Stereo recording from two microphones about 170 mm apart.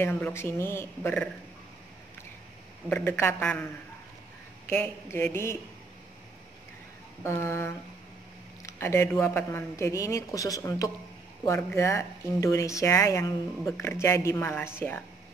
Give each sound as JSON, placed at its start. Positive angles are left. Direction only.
{"t": 0.0, "sound": "speech", "side_deg": 10}
{"t": 2.9, "sound": "speech", "side_deg": 15}
{"t": 4.6, "sound": "speech", "side_deg": 15}
{"t": 7.2, "sound": "speech", "side_deg": 15}